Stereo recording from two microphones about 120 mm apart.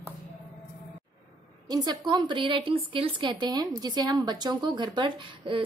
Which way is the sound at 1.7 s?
35° right (ahead or behind).